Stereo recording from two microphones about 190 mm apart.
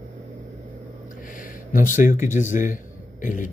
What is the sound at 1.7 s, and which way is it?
A man's voice, 45° left (ahead or behind).